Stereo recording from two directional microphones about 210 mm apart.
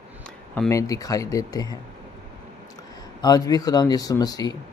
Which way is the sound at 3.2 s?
15° left (ahead or behind).